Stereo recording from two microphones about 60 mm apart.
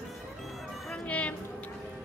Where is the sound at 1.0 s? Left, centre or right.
Left.